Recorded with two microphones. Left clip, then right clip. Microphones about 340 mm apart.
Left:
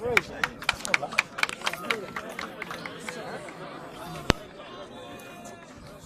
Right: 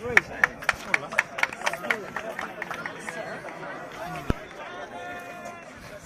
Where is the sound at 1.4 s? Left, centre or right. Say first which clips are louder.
Right 2 dB; right.